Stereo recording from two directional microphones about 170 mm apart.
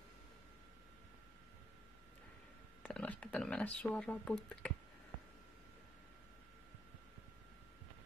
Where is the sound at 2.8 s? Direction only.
10° left (ahead or behind).